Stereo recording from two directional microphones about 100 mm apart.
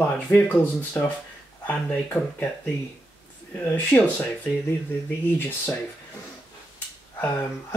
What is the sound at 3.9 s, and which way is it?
Speech, 20° left (ahead or behind).